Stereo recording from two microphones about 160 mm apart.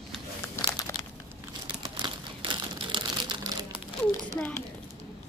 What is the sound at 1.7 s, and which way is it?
Crumpling, 30° right (ahead or behind).